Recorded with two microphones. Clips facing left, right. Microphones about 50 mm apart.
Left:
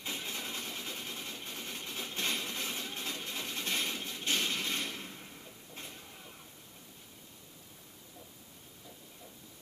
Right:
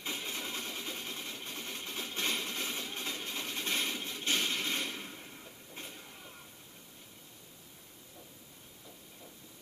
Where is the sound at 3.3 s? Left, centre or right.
Centre.